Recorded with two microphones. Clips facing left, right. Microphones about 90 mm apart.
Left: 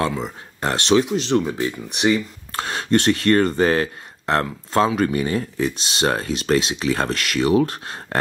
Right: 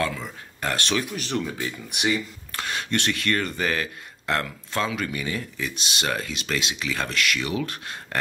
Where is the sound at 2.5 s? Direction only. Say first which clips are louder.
Left 8 dB; 35° left (ahead or behind).